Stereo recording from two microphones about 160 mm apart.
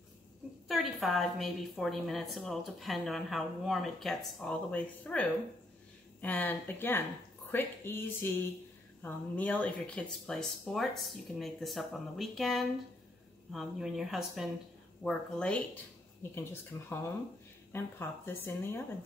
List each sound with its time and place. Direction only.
0.7 s a woman's voice: centre (ahead or behind)